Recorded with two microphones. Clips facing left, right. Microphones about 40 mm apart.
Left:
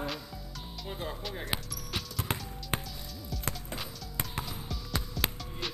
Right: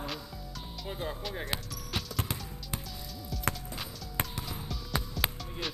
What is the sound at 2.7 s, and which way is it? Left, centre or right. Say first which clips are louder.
Music: left 6 dB; left.